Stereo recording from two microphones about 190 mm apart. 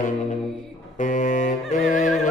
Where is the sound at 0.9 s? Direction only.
40° left (ahead or behind).